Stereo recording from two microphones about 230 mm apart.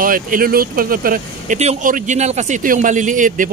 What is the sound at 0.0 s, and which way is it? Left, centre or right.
Speech, right.